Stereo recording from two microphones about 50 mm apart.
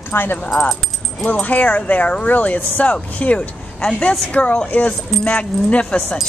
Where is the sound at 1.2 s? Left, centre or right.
Left.